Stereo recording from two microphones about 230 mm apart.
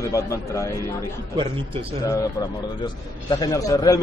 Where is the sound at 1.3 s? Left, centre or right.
Right.